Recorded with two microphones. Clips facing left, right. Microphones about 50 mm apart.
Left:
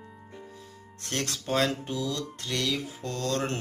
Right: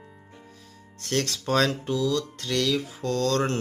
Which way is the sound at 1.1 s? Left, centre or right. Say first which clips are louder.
Right 4 dB; centre.